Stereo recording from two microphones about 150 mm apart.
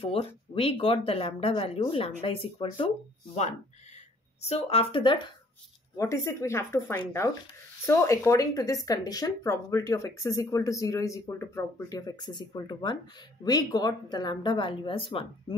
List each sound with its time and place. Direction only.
0.0 s speech: 40° left (ahead or behind)
4.4 s speech: 45° left (ahead or behind)
5.9 s speech: 20° left (ahead or behind); by 15.2 s 35° left (ahead or behind)